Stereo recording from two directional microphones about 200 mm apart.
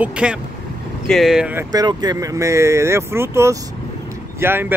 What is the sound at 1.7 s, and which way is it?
Speech, 20° right (ahead or behind).